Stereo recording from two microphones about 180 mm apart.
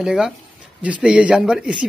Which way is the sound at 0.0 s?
5° right (ahead or behind).